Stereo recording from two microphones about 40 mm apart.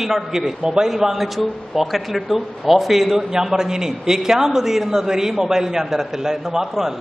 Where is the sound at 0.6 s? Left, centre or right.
Right.